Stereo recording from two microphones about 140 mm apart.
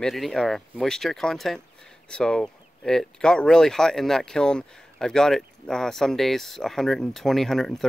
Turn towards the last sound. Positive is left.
turn(degrees=5)  # may be behind; listen again after turning